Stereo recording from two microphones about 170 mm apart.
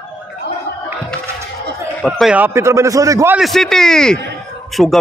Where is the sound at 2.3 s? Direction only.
15° right (ahead or behind).